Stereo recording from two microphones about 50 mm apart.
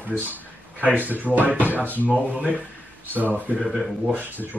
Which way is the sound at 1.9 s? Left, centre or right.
Left.